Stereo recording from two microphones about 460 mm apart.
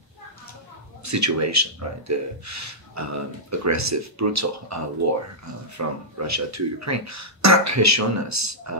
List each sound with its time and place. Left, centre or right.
1.0 s speech: right
5.8 s speech: right